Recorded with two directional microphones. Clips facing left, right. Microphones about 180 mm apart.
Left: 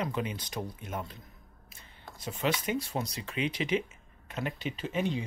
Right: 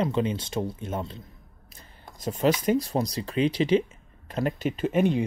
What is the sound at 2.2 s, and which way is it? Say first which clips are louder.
Speech: right 8 dB; 40° right (ahead or behind).